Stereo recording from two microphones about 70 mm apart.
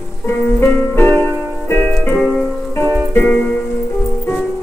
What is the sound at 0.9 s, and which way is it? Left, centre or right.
Music, left.